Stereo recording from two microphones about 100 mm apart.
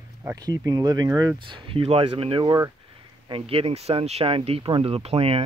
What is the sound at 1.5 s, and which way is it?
Speech, 70° right (ahead or behind).